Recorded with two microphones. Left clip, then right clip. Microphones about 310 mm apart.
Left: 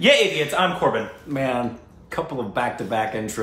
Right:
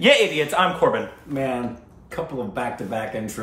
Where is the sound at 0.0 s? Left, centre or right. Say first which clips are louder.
Even; centre.